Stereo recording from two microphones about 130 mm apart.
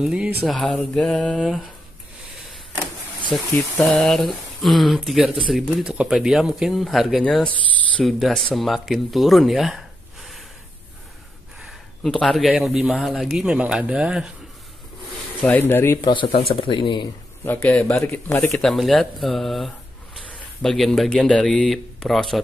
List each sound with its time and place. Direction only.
0.0 s speech: 10° right (ahead or behind)
3.3 s speech: centre (ahead or behind)
11.6 s speech: 5° left (ahead or behind)
15.4 s speech: 15° left (ahead or behind)
16.0 s speech: 40° left (ahead or behind)
17.5 s speech: 15° left (ahead or behind)
18.5 s speech: centre (ahead or behind)